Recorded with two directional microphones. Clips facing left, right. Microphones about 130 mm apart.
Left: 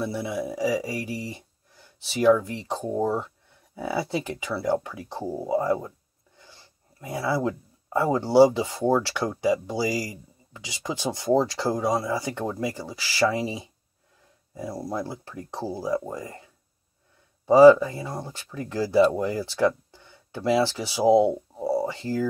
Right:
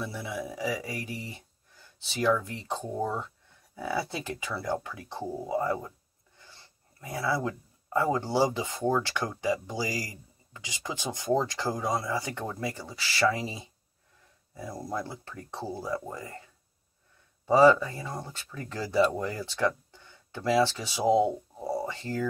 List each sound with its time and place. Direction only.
0.0 s speech: 25° left (ahead or behind)
0.6 s speech: 15° left (ahead or behind)
7.0 s speech: 15° left (ahead or behind)
15.0 s speech: 20° left (ahead or behind)
17.5 s speech: 15° left (ahead or behind)